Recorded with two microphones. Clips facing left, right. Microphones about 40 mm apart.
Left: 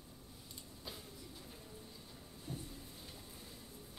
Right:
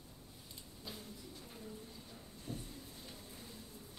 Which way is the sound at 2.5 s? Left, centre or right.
Right.